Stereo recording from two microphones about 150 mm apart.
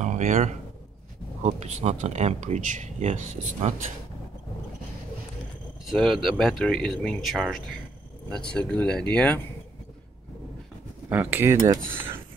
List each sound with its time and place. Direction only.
0.0 s speech: 55° right (ahead or behind)
5.9 s speech: centre (ahead or behind)
11.1 s speech: 10° right (ahead or behind)
11.6 s speech: 30° right (ahead or behind)